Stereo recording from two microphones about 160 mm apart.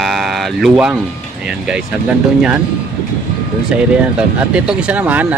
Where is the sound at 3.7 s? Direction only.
5° right (ahead or behind).